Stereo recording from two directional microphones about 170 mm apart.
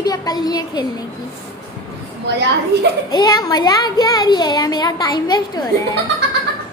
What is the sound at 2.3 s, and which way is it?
Speech, 85° right.